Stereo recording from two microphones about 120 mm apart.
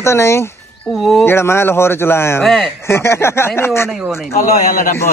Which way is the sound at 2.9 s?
20° left (ahead or behind).